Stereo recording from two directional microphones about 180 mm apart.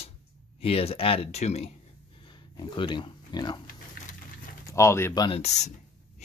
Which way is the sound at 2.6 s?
25° left (ahead or behind).